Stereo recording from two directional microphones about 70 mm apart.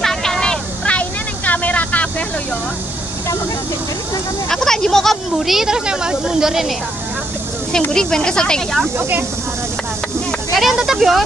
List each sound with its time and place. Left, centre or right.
0.0 s vehicle: centre
0.9 s vehicle: left
4.5 s speech: centre
7.9 s speech: centre
10.5 s speech: centre